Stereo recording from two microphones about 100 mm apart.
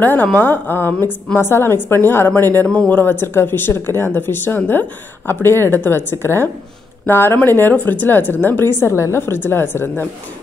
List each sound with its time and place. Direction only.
0.0 s speech: 15° left (ahead or behind)